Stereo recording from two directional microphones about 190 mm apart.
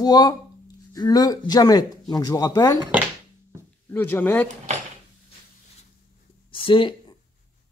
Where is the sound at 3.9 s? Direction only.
10° left (ahead or behind).